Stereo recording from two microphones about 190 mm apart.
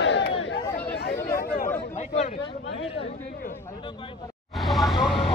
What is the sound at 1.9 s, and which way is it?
Chatter, 40° left (ahead or behind).